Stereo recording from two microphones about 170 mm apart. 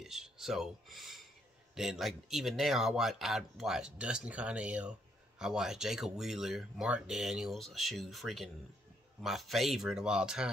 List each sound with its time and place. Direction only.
0.0 s speech: 5° right (ahead or behind)